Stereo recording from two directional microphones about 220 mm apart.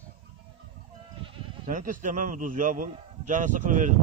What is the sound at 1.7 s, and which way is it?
A man's voice, 35° right (ahead or behind).